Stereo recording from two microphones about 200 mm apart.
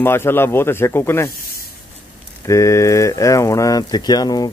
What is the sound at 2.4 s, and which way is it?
Speech, 15° left (ahead or behind).